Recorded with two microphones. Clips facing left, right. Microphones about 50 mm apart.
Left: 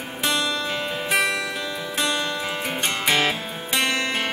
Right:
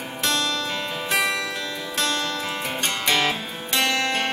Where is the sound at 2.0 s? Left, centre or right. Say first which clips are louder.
Left 1 dB; centre.